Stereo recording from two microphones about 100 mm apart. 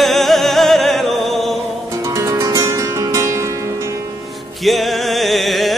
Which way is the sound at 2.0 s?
30° right (ahead or behind).